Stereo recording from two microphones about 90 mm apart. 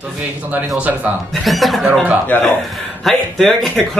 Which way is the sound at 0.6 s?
20° right (ahead or behind).